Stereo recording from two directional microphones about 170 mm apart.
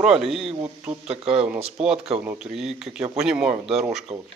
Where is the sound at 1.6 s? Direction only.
35° right (ahead or behind).